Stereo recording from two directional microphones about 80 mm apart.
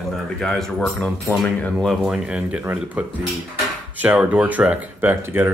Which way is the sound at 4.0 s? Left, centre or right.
Right.